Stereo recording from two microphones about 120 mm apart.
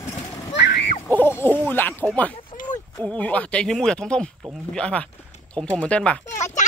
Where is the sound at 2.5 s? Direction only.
90° left.